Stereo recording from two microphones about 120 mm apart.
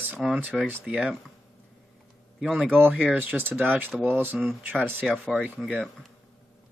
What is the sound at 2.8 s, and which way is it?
Speech, 15° right (ahead or behind).